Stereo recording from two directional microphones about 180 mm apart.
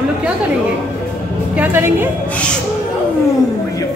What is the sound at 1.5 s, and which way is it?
Speech, 10° right (ahead or behind).